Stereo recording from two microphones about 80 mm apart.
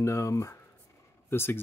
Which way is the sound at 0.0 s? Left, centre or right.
Left.